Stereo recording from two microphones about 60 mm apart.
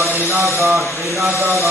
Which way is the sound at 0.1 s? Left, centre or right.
Right.